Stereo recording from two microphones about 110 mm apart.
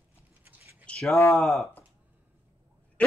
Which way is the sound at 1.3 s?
Centre (ahead or behind).